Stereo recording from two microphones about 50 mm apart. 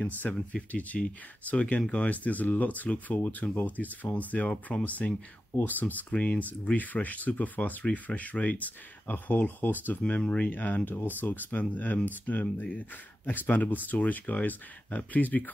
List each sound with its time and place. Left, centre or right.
0.3 s speech: left